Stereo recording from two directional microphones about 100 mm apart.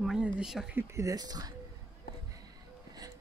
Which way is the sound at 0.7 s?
30° right (ahead or behind).